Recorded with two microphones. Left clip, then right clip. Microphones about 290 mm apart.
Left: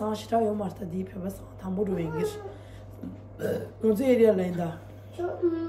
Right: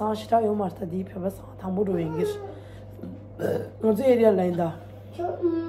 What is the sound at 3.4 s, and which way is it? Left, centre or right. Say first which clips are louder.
A woman's voice: right 2 dB; centre.